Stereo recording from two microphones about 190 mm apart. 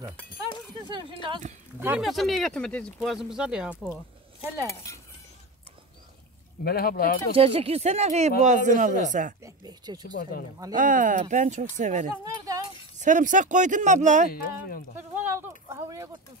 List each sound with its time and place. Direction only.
0.8 s speech: 25° right (ahead or behind)
1.8 s speech: 10° right (ahead or behind)
3.7 s speech: 10° left (ahead or behind)
6.6 s speech: 55° left (ahead or behind)
7.3 s speech: 30° right (ahead or behind)
9.4 s speech: 20° right (ahead or behind)
10.7 s speech: 45° right (ahead or behind)
14.3 s speech: 50° left (ahead or behind)
15.0 s a sound: 10° right (ahead or behind)